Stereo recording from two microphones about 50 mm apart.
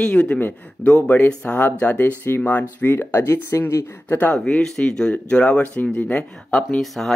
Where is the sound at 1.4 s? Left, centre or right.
Left.